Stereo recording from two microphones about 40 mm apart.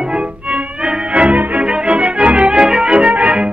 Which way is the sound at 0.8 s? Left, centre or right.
Right.